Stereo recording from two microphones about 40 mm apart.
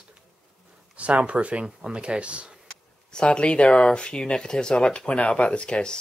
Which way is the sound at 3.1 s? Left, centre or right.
Left.